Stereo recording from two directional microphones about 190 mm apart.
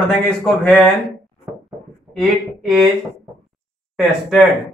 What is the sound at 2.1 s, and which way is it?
Speech, centre (ahead or behind).